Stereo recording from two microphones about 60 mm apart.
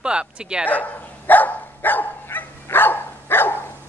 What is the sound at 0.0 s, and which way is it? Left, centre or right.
Speech, centre.